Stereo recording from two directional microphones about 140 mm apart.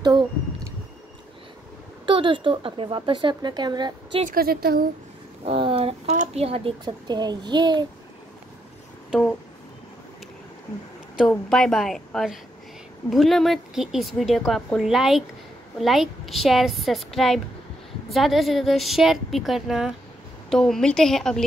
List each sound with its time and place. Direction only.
2.0 s a woman's voice: 35° right (ahead or behind)
4.3 s speech: 90° right
5.4 s speech: 40° right (ahead or behind)
6.8 s a woman's voice: 30° right (ahead or behind)
11.1 s a woman's voice: centre (ahead or behind)